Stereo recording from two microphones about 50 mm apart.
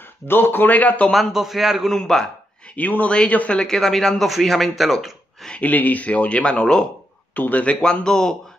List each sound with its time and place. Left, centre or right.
0.3 s speech: left
1.1 s a man's voice: centre
1.9 s speech: centre
2.7 s speech: left
3.6 s speech: centre
5.6 s speech: left; by 6.9 s centre
7.3 s speech: left
7.8 s speech: centre